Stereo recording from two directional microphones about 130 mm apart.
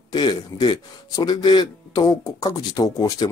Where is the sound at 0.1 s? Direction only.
35° left (ahead or behind).